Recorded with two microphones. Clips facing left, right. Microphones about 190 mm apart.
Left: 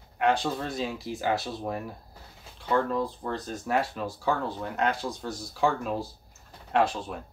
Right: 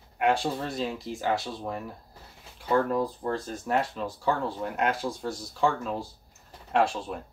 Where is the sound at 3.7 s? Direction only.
5° left (ahead or behind).